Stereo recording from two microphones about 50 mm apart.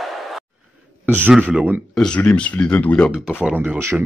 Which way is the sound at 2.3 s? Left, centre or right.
Left.